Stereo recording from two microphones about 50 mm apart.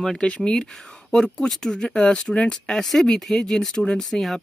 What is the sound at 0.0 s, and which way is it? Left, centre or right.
Speech, centre.